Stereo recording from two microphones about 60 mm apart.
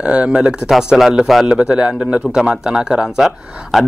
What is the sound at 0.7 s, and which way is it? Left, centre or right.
Speech, centre.